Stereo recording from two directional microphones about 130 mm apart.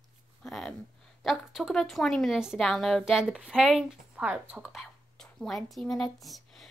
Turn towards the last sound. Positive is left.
turn(degrees=0)  # may be behind; listen again after turning